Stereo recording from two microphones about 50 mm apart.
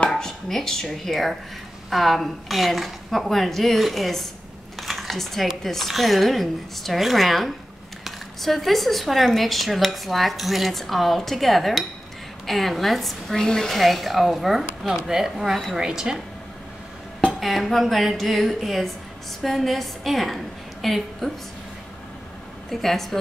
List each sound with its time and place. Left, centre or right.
0.1 s chopping: centre
1.9 s a woman's voice: centre
17.4 s a woman's voice: centre
22.7 s speech: centre